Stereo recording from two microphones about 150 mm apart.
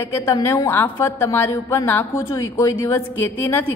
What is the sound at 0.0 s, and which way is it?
A woman's voice, 20° left (ahead or behind).